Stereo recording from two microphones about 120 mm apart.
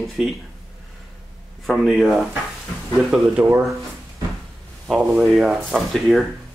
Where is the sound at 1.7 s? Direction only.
Centre (ahead or behind).